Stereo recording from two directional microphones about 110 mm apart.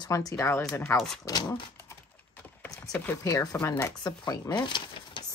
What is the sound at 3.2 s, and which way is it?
Speech, 35° left (ahead or behind).